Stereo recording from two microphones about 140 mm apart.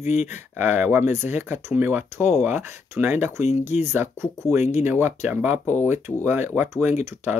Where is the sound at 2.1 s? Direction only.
55° left (ahead or behind).